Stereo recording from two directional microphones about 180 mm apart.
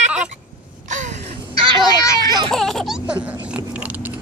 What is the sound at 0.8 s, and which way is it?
Gasp, 40° right (ahead or behind).